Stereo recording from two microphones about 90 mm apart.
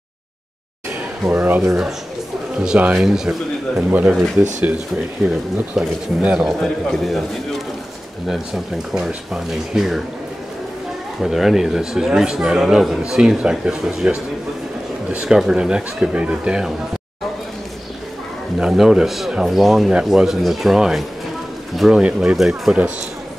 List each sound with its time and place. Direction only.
1.2 s speech: 20° right (ahead or behind)
3.9 s speech: 15° right (ahead or behind)
5.8 s a man's voice: 5° right (ahead or behind)
8.9 s a man's voice: 5° right (ahead or behind)
11.1 s a man's voice: 5° right (ahead or behind)
18.6 s a man's voice: 5° right (ahead or behind)